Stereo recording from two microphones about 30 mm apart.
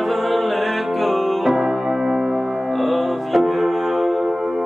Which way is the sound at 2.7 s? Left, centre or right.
Centre.